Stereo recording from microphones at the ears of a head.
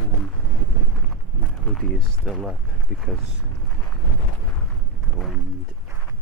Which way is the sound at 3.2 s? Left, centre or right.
Right.